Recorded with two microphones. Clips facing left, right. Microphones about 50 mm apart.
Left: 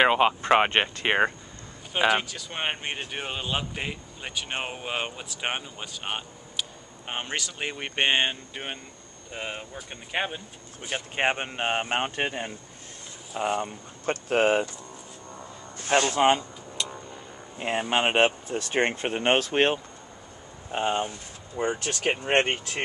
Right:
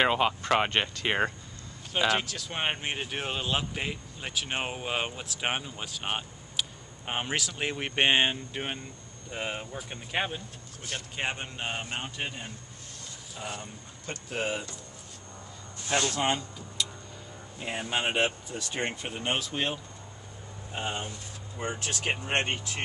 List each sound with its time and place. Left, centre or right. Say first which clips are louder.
0.0 s speech: left 4 dB; centre
2.0 s speech: left 3 dB; centre
11.1 s speech: left 8 dB; left
15.9 s vehicle: left 7 dB; left
17.6 s speech: left 6 dB; left